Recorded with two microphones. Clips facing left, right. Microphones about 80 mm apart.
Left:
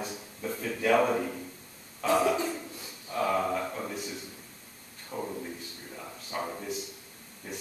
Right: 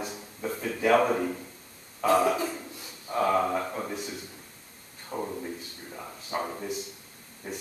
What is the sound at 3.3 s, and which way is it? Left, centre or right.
Speech, centre.